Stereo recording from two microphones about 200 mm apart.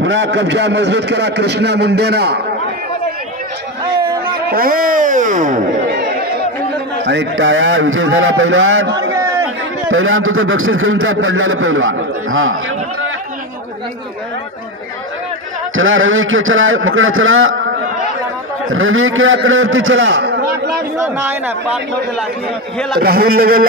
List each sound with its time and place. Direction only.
0.0 s a man's voice: 65° right (ahead or behind)
3.9 s a sound: 25° right (ahead or behind)
4.3 s speech: 45° right (ahead or behind)
7.0 s a man's voice: 65° right (ahead or behind); by 8.8 s 85° right
9.8 s a man's voice: 90° right
15.7 s a man's voice: 75° right (ahead or behind)
18.7 s a man's voice: 85° right; by 20.7 s 55° right (ahead or behind)
21.0 s speech: 10° right (ahead or behind)
22.9 s speech: 50° right (ahead or behind)